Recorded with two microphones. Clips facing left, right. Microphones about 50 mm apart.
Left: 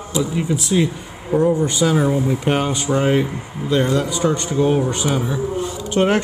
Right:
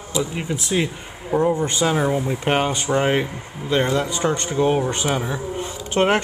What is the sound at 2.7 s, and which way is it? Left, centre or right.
Speech, right.